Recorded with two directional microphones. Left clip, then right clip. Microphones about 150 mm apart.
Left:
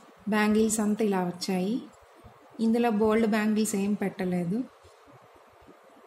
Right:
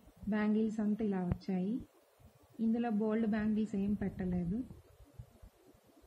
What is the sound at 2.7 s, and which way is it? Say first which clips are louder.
A woman's voice: left 12 dB; 20° left (ahead or behind).